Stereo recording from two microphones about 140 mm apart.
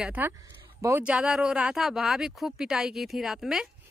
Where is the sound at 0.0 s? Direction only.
10° right (ahead or behind).